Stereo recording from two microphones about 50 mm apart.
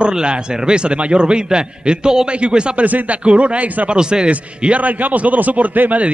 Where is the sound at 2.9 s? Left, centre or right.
Right.